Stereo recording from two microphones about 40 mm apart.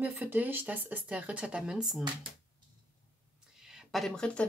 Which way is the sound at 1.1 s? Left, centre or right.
Right.